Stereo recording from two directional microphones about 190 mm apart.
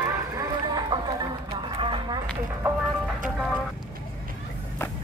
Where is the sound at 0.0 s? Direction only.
20° right (ahead or behind).